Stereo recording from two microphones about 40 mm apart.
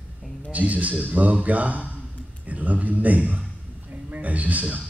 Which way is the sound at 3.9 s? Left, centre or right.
Right.